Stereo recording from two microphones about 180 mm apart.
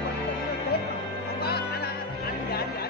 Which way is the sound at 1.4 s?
60° left (ahead or behind).